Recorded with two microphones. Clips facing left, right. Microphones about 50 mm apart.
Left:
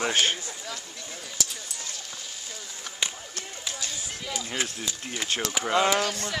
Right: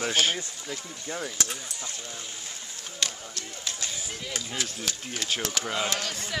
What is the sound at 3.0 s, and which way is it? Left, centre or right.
Basketball bounce, centre.